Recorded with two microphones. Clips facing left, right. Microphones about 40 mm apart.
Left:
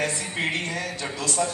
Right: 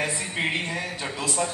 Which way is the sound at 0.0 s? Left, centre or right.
Centre.